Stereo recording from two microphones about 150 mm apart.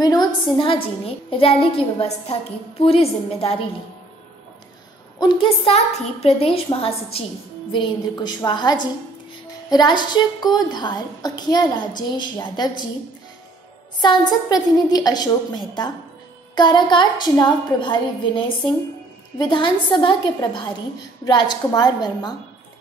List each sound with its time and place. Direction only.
0.0 s a woman's voice: 25° left (ahead or behind)
5.2 s a woman's voice: 40° left (ahead or behind)
14.0 s a woman's voice: 25° left (ahead or behind)